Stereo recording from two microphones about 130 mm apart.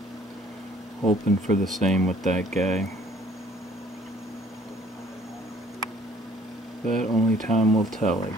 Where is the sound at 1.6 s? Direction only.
Centre (ahead or behind).